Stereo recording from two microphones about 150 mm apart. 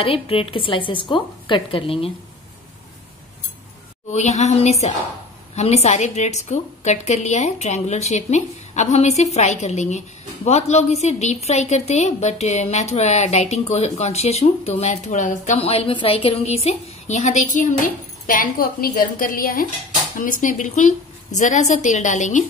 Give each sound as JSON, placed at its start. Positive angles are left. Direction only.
{"t": 0.0, "sound": "a woman's voice", "side_deg": 40}
{"t": 4.1, "sound": "a woman's voice", "side_deg": 50}
{"t": 18.2, "sound": "a woman's voice", "side_deg": 65}